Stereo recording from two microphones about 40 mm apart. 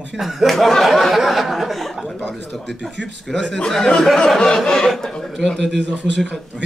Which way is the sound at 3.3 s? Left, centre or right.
Centre.